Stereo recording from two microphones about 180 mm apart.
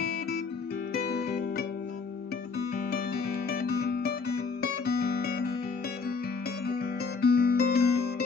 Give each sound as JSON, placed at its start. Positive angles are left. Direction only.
{"t": 0.9, "sound": "music", "side_deg": 65}
{"t": 3.4, "sound": "guitar", "side_deg": 60}
{"t": 6.7, "sound": "music", "side_deg": 60}